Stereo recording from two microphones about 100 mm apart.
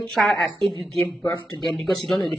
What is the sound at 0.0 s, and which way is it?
Speech, centre (ahead or behind).